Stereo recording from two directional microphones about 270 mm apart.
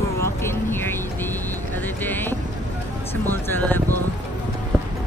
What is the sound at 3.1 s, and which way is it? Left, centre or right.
Speech, centre.